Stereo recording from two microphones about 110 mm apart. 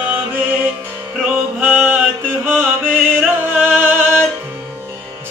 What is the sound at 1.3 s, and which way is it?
Music, 15° right (ahead or behind).